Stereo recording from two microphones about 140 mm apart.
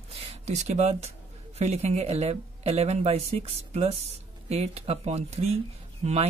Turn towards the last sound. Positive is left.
turn(degrees=-50)  # may be behind; listen again after turning